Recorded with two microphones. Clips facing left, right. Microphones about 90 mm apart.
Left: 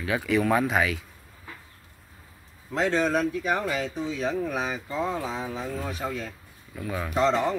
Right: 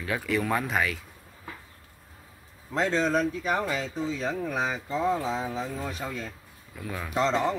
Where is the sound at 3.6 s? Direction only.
35° right (ahead or behind).